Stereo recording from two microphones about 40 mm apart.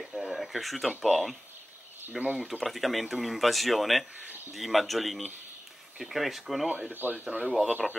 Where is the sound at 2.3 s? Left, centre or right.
Centre.